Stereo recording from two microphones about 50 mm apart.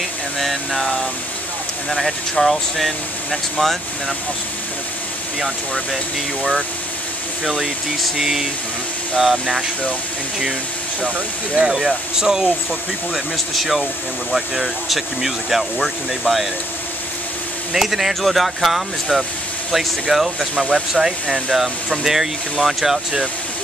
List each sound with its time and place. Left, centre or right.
0.4 s speech: centre
7.4 s speech: centre
11.0 s speech: right
13.1 s speech: centre
17.7 s speech: centre